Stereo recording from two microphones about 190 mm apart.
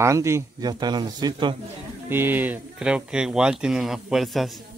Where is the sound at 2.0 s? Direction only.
10° right (ahead or behind).